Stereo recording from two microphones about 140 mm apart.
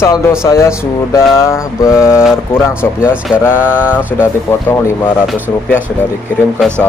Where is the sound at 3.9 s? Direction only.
10° right (ahead or behind).